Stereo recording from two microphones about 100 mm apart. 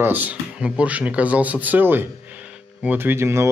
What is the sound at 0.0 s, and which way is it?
Speech, 15° right (ahead or behind).